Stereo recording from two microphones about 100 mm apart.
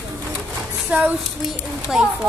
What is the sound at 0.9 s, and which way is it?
Speech, 15° right (ahead or behind).